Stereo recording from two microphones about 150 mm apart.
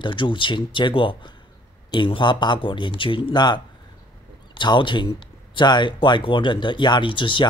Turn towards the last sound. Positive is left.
turn(degrees=35)  # may be behind; listen again after turning